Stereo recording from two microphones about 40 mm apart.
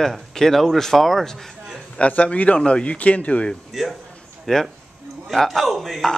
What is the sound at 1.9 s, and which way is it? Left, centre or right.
A man's voice, left.